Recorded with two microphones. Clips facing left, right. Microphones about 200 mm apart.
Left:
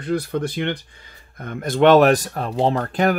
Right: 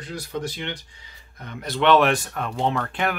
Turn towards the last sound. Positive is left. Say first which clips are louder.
# left 6 dB
turn(degrees=40)  # may be behind; listen again after turning